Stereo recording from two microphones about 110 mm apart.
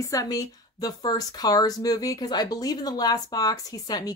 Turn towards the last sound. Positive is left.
turn(degrees=35)  # may be behind; listen again after turning